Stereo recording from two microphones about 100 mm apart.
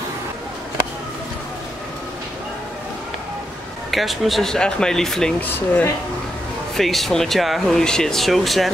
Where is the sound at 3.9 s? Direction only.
Centre (ahead or behind).